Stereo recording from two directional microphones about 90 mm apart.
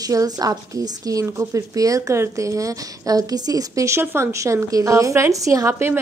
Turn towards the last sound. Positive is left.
turn(degrees=-25)  # may be behind; listen again after turning